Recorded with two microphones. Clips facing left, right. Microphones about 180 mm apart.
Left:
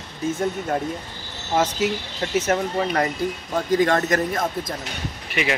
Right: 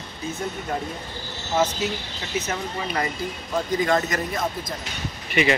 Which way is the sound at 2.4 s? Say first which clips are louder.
Left 7 dB; 45° left (ahead or behind).